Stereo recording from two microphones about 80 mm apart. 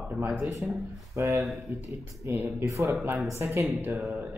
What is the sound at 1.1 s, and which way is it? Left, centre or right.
Speech, right.